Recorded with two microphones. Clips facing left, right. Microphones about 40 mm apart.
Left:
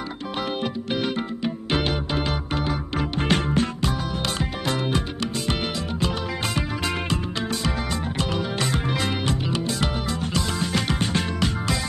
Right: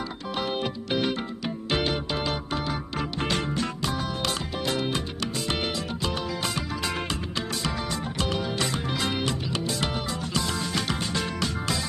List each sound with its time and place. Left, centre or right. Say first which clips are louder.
1.1 s music: left 4 dB; left
8.7 s music: left 4 dB; left
11.0 s music: left 4 dB; left